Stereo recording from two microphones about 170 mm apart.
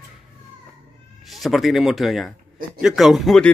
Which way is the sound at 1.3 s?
Centre (ahead or behind).